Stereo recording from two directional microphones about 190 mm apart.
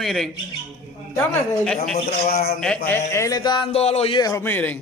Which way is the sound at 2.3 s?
55° left (ahead or behind).